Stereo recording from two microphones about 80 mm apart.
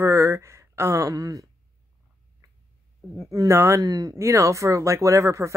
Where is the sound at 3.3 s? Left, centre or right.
Right.